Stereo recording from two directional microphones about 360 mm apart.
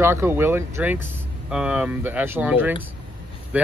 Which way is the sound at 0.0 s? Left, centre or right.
Centre.